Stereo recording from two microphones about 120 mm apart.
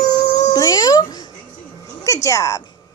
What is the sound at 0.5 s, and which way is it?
Cat, 35° left (ahead or behind).